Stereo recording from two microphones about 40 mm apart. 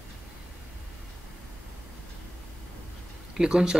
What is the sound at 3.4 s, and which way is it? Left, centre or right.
Speech, centre.